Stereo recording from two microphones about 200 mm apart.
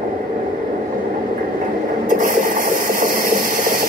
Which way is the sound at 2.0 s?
40° right (ahead or behind).